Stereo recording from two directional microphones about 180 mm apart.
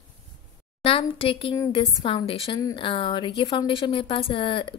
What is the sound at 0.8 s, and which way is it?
A woman's voice, 30° left (ahead or behind).